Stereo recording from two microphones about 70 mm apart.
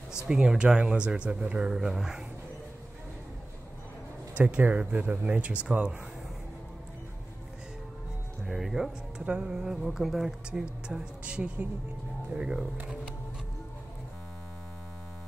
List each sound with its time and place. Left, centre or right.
0.3 s speech: centre
1.7 s speech: centre
4.4 s speech: right
8.5 s speech: centre
10.5 s speech: centre